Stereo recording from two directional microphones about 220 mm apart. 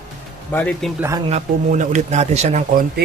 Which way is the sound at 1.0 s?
15° right (ahead or behind).